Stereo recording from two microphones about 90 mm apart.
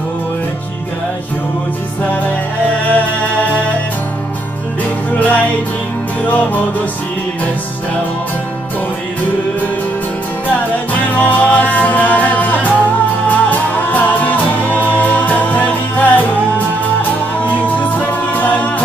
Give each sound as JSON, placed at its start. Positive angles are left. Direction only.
{"t": 5.1, "sound": "music", "side_deg": 15}
{"t": 10.9, "sound": "music", "side_deg": 20}